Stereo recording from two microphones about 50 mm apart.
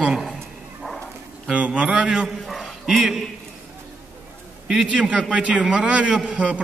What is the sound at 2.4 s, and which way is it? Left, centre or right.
Bow-wow, centre.